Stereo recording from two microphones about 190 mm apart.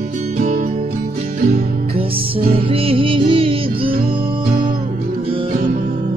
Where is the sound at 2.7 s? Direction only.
30° right (ahead or behind).